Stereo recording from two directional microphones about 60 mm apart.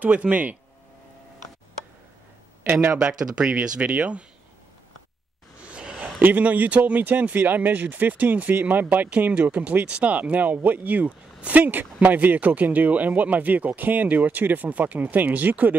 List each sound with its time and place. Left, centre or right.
0.0 s speech: right
2.6 s speech: right
2.9 s speech: right
5.7 s a sound: centre
6.2 s speech: right